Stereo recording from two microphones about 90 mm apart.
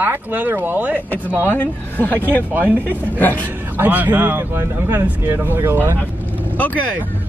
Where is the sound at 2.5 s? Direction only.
20° right (ahead or behind).